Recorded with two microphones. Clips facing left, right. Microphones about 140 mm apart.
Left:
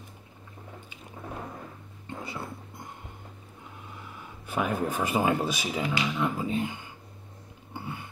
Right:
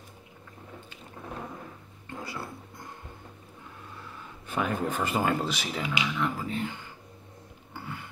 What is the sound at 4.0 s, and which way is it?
Speech, 10° left (ahead or behind).